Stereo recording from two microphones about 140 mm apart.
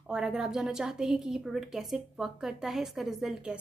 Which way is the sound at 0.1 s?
5° right (ahead or behind).